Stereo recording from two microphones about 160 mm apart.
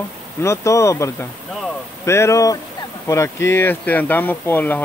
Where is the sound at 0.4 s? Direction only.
15° left (ahead or behind).